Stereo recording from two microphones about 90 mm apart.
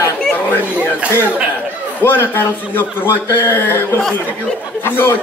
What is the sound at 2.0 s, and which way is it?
A man's voice, 25° left (ahead or behind).